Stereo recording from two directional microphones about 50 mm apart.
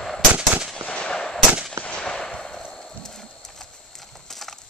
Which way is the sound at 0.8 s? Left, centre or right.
Left.